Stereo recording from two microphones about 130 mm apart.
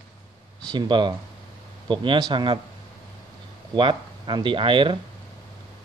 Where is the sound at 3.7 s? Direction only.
35° right (ahead or behind).